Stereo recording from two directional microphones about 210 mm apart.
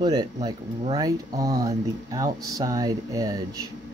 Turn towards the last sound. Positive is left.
turn(degrees=-15)  # may be behind; listen again after turning